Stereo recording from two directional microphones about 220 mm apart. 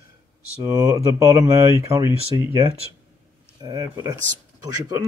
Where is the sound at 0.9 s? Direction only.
15° right (ahead or behind).